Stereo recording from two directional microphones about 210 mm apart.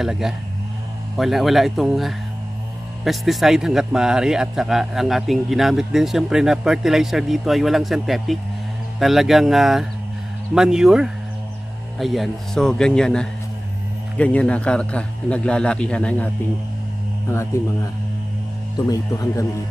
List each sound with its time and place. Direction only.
0.0 s a man's voice: centre (ahead or behind)
18.9 s speech: 15° left (ahead or behind)